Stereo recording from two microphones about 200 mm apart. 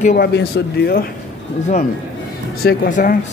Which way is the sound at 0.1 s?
55° left (ahead or behind).